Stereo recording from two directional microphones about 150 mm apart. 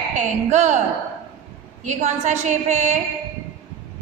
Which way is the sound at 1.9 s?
50° right (ahead or behind).